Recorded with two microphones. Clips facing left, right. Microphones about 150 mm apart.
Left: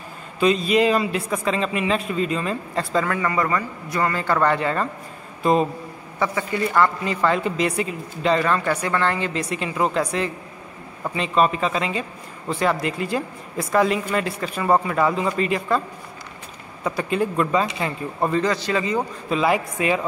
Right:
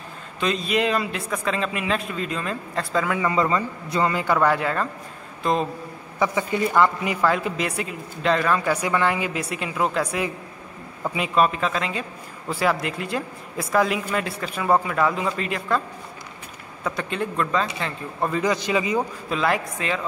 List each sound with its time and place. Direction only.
0.4 s a man's voice: centre (ahead or behind)
3.2 s a man's voice: 20° right (ahead or behind); by 5.7 s 5° left (ahead or behind)
6.1 s a man's voice: 15° right (ahead or behind)
7.2 s a man's voice: 5° right (ahead or behind)
16.8 s a man's voice: 5° left (ahead or behind)
18.4 s a man's voice: 15° right (ahead or behind)
19.2 s a man's voice: 5° left (ahead or behind)